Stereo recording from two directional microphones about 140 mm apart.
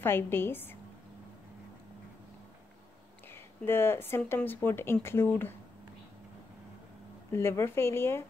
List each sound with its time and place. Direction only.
0.0 s speech: 15° left (ahead or behind)
3.6 s speech: 15° left (ahead or behind)
7.3 s speech: 20° left (ahead or behind)